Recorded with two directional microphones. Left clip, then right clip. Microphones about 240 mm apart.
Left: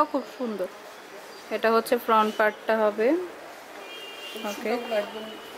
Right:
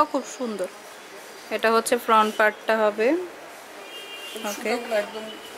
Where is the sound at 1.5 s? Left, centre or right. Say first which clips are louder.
Right 2 dB; centre.